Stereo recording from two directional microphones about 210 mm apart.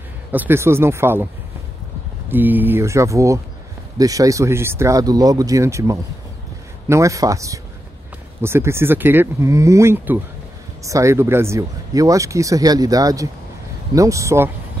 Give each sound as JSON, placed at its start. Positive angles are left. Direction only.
{"t": 0.3, "sound": "speech", "side_deg": -10}
{"t": 2.2, "sound": "speech", "side_deg": -10}